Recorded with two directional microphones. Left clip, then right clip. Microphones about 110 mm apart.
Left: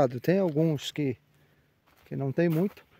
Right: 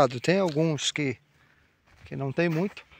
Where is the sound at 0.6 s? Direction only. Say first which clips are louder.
Right 2 dB; 60° left (ahead or behind).